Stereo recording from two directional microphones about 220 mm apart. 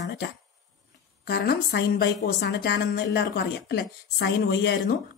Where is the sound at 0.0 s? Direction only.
50° left (ahead or behind).